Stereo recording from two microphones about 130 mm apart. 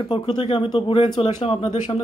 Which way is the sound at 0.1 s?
45° left (ahead or behind).